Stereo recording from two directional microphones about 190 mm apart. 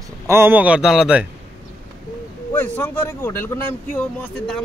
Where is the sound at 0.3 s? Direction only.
10° right (ahead or behind).